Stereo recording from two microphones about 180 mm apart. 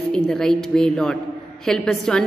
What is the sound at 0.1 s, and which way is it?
A woman's voice, 5° left (ahead or behind).